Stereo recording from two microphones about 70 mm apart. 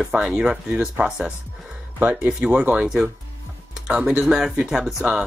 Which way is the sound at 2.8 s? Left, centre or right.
Centre.